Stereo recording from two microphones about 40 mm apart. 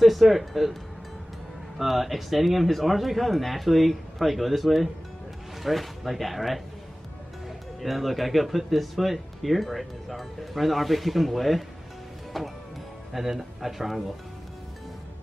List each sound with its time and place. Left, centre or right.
0.0 s speech: centre
1.8 s speech: centre